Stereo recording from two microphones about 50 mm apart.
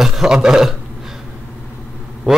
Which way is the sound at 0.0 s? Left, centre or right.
Centre.